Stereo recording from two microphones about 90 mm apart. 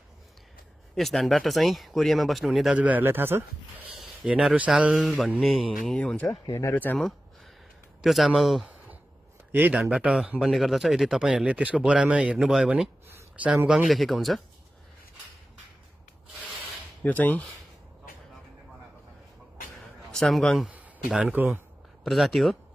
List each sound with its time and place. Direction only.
0.9 s speech: centre (ahead or behind)
2.8 s speech: 20° right (ahead or behind)
3.9 s speech: 5° right (ahead or behind)
5.9 s speech: 10° left (ahead or behind)
8.0 s speech: centre (ahead or behind)
9.5 s speech: 15° right (ahead or behind)
10.4 s speech: centre (ahead or behind)
17.0 s speech: 20° left (ahead or behind)
20.1 s a man's voice: 5° left (ahead or behind)
20.6 s a sound: 15° right (ahead or behind)
21.1 s speech: 10° right (ahead or behind)
22.0 s speech: centre (ahead or behind)